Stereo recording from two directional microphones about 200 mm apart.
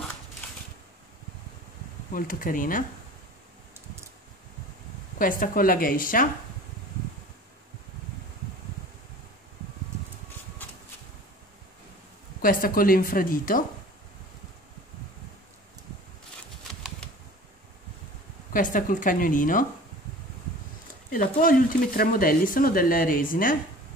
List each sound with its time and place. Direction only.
2.1 s speech: 45° left (ahead or behind)
5.2 s speech: 45° left (ahead or behind)
12.4 s speech: 45° left (ahead or behind)
18.5 s speech: 40° left (ahead or behind)
21.1 s speech: 45° left (ahead or behind)